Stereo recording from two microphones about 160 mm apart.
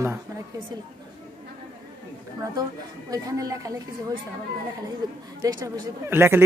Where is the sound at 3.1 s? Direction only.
20° right (ahead or behind).